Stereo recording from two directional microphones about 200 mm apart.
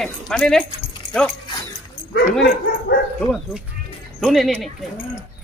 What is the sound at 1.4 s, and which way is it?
Dog, 15° left (ahead or behind).